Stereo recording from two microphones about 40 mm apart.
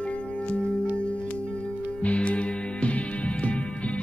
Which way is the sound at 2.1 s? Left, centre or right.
Left.